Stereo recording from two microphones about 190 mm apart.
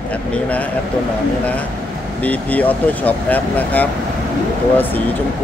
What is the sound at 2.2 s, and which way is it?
Speech, 10° left (ahead or behind).